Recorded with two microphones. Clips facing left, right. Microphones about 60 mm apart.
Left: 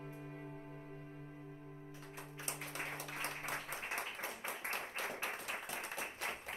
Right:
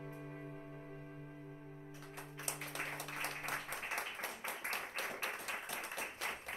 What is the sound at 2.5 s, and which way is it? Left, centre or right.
Applause, right.